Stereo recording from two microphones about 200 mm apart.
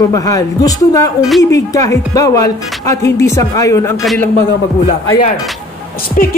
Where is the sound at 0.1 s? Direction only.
15° left (ahead or behind).